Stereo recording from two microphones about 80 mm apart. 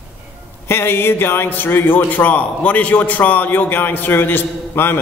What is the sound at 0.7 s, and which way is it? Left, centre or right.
A man's voice, left.